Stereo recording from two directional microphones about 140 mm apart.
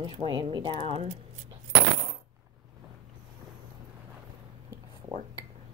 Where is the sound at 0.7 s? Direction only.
50° right (ahead or behind).